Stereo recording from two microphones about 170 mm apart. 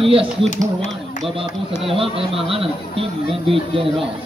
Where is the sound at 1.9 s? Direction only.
35° right (ahead or behind).